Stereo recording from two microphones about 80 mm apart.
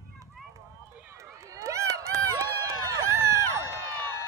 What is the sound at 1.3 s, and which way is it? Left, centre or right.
Run, right.